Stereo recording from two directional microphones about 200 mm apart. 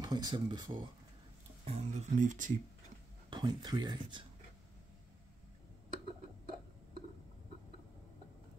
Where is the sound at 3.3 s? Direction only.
20° right (ahead or behind).